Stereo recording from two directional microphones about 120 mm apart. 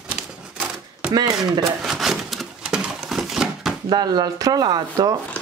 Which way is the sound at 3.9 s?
35° right (ahead or behind).